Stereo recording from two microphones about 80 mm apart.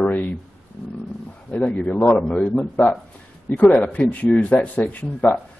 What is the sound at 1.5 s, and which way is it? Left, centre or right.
Speech, centre.